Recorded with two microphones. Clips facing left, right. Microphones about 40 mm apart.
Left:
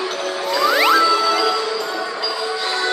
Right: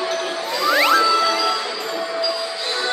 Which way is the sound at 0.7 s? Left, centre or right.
Centre.